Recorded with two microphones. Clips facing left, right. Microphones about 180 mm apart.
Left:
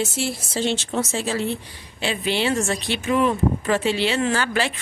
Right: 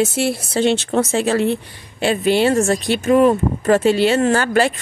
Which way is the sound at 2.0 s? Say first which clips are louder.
Right 8 dB; 50° right (ahead or behind).